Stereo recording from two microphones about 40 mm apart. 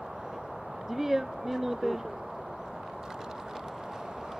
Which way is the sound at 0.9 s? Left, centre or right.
Centre.